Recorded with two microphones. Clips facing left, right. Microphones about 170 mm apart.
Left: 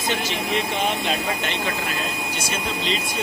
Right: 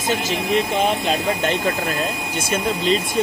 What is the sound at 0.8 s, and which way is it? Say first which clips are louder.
Speech: right 4 dB; 40° right (ahead or behind).